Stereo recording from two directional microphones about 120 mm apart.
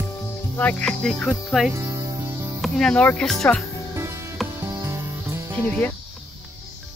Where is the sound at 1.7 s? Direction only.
25° right (ahead or behind).